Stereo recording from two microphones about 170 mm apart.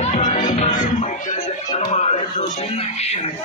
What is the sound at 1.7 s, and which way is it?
Music, 40° left (ahead or behind).